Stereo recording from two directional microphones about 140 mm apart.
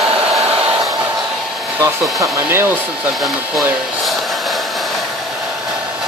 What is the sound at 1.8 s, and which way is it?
Speech, 20° right (ahead or behind).